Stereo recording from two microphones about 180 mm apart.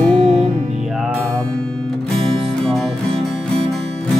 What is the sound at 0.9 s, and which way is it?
Music, centre (ahead or behind).